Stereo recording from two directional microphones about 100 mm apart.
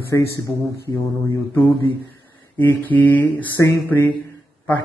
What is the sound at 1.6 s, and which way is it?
A man's voice, 20° left (ahead or behind).